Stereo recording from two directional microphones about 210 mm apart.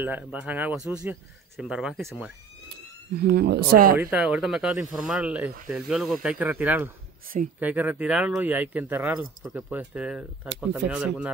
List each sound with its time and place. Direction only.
0.0 s speech: 5° right (ahead or behind)
2.7 s speech: 50° right (ahead or behind)
4.0 s speech: 5° right (ahead or behind)